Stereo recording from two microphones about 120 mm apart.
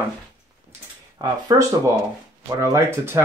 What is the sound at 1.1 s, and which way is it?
Speech, 30° right (ahead or behind).